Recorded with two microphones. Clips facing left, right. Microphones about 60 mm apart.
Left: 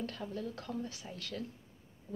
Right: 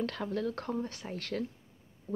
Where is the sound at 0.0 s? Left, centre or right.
Right.